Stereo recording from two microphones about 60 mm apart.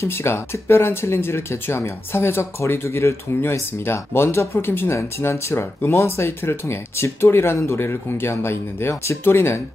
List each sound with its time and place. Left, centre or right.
0.0 s speech: left